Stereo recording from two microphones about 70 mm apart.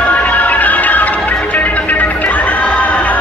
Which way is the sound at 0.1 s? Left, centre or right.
Left.